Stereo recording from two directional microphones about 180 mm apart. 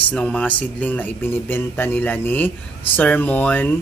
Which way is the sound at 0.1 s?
5° left (ahead or behind).